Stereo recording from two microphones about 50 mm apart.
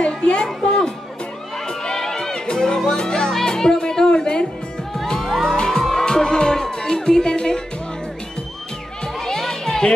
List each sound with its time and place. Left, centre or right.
0.0 s a sound: centre
0.7 s music: centre
9.0 s music: centre